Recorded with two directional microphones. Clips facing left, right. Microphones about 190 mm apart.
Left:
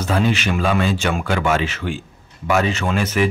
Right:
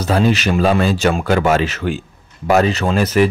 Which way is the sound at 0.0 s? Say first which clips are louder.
Right 4 dB; 40° right (ahead or behind).